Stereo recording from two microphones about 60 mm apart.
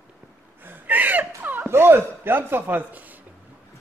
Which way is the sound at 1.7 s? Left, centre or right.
Right.